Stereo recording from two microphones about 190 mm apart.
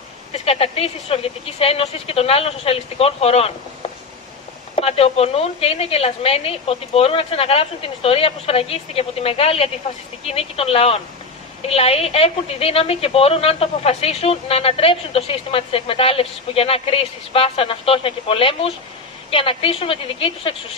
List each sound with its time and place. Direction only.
0.3 s a woman's voice: 30° left (ahead or behind)
4.7 s a woman's voice: 35° left (ahead or behind)